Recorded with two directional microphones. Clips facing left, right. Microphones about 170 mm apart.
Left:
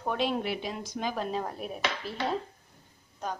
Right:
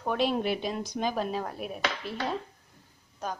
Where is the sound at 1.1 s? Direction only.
5° right (ahead or behind).